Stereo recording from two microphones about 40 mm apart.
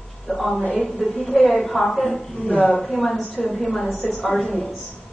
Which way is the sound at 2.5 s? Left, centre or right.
Left.